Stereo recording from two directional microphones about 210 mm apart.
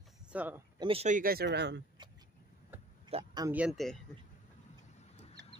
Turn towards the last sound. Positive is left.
turn(degrees=30)  # may be behind; listen again after turning